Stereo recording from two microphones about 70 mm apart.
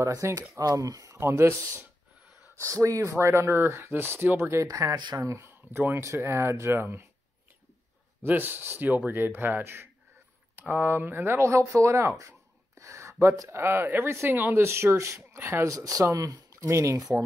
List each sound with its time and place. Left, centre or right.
0.0 s speech: right
1.1 s speech: right
8.2 s speech: right
15.7 s speech: right